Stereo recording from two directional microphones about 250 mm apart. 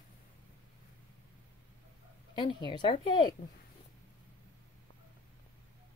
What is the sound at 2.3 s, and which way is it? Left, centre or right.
Speech, centre.